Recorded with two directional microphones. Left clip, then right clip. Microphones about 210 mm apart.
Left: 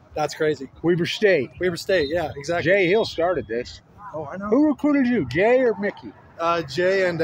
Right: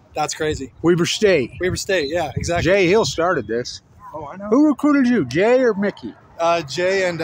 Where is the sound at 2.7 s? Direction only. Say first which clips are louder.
Right 3 dB; 40° right (ahead or behind).